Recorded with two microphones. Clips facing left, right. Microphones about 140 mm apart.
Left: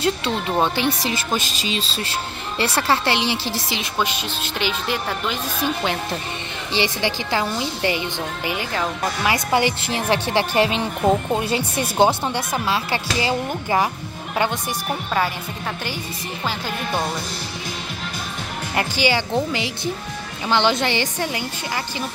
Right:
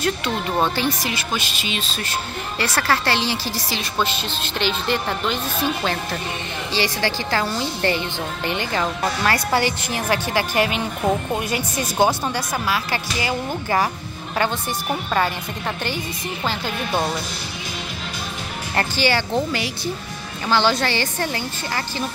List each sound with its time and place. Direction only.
0.0 s a woman's voice: 25° left (ahead or behind)
1.0 s a woman's voice: 35° left (ahead or behind)
4.0 s a woman's voice: 10° left (ahead or behind)
9.3 s a woman's voice: 20° left (ahead or behind)
13.5 s a woman's voice: 15° left (ahead or behind)
18.8 s a woman's voice: 15° left (ahead or behind)